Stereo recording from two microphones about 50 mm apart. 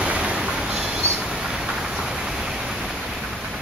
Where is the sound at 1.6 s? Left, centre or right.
Centre.